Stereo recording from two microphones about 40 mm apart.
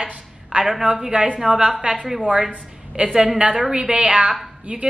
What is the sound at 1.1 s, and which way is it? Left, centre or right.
Speech, right.